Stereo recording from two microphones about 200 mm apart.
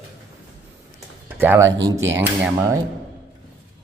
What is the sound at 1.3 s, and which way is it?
Speech, 10° right (ahead or behind).